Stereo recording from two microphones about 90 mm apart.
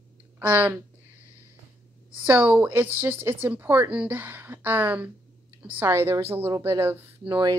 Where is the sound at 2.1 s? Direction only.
15° right (ahead or behind).